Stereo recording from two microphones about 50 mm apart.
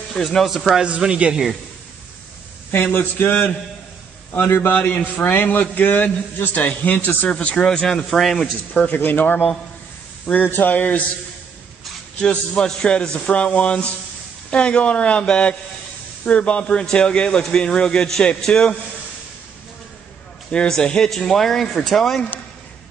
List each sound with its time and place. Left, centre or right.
0.1 s speech: centre
0.8 s speech: right
2.7 s speech: left
4.6 s a man's voice: left
7.2 s speech: left
8.2 s speech: centre
8.8 s a man's voice: left
12.2 s speech: centre
20.5 s speech: centre